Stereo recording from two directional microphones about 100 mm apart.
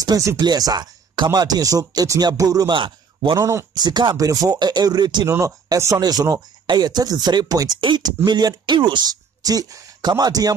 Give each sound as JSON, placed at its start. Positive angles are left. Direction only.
{"t": 0.0, "sound": "speech", "side_deg": -35}
{"t": 2.7, "sound": "a man's voice", "side_deg": -55}
{"t": 3.3, "sound": "speech", "side_deg": -30}
{"t": 3.7, "sound": "speech", "side_deg": -45}
{"t": 5.3, "sound": "speech", "side_deg": -30}
{"t": 7.8, "sound": "speech", "side_deg": -50}